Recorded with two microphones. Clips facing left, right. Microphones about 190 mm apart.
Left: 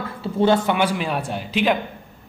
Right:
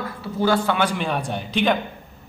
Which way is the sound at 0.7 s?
5° left (ahead or behind).